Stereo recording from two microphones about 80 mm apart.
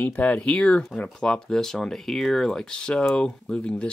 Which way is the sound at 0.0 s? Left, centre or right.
Left.